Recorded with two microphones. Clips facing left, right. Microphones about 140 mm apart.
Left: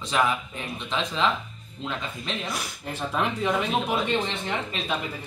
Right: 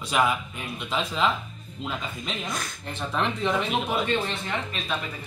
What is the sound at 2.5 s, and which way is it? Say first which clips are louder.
Speech: left 1 dB; 10° left (ahead or behind).